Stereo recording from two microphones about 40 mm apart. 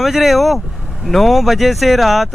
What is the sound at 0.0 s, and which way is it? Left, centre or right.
Speech, centre.